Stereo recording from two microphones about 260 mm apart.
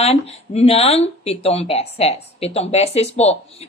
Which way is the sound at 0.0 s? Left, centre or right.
Left.